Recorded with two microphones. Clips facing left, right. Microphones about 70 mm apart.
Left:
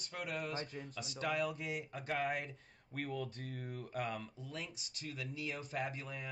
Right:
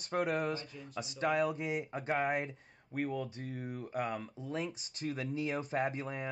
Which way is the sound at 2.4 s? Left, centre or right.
Centre.